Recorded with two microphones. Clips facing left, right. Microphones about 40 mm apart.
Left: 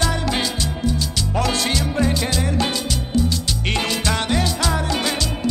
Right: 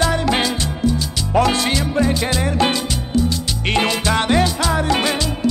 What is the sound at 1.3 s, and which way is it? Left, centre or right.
Music, centre.